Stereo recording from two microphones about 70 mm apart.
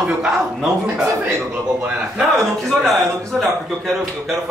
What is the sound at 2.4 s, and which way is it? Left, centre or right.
A man's voice, centre.